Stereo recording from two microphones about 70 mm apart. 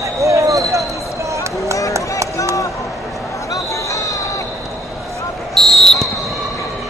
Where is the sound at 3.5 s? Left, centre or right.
Left.